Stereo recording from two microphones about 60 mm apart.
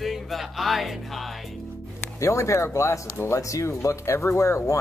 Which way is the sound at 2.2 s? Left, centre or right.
Left.